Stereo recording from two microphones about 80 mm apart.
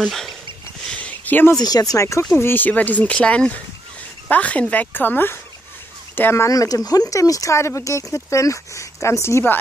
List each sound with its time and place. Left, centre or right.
0.0 s speech: centre
0.8 s a sound: centre
1.6 s speech: left
2.3 s speech: left
6.5 s speech: left